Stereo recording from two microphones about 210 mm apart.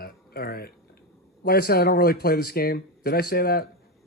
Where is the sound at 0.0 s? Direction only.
45° left (ahead or behind).